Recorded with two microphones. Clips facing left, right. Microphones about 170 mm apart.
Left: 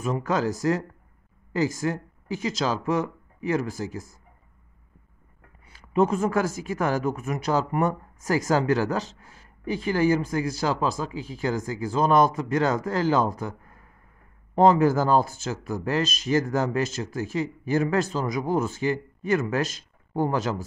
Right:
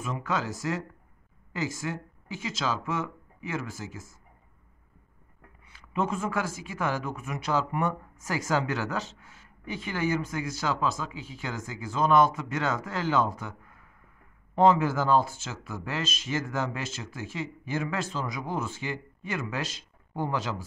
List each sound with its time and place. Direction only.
0.0 s speech: 40° left (ahead or behind)
5.7 s speech: 40° left (ahead or behind)